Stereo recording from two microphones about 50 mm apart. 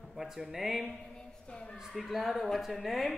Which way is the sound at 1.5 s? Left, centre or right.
Centre.